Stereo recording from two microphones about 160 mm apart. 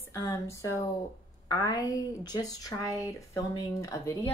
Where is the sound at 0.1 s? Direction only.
20° left (ahead or behind).